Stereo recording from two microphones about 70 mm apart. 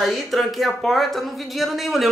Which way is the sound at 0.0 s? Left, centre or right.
Centre.